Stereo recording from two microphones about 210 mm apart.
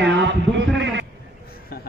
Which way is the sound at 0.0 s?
60° right (ahead or behind).